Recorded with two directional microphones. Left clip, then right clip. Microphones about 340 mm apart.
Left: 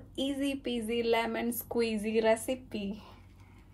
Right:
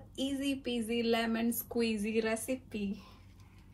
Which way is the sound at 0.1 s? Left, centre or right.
Left.